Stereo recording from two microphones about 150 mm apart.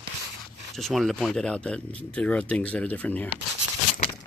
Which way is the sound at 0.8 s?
Centre (ahead or behind).